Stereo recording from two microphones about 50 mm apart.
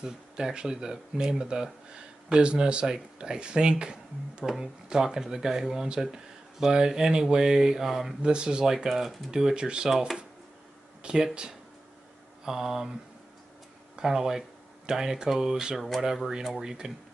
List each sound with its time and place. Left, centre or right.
0.0 s speech: centre
8.2 s speech: centre
8.7 s speech: centre
11.0 s a sound: centre
12.4 s speech: centre
13.9 s speech: centre